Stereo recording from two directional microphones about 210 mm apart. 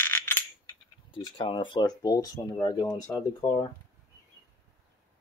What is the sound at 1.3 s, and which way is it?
Speech, 25° left (ahead or behind).